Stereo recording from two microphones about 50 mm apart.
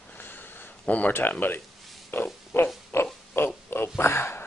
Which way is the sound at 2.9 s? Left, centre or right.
Left.